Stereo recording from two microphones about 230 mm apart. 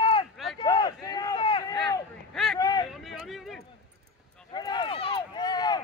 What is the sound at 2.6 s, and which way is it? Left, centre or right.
Vehicle, centre.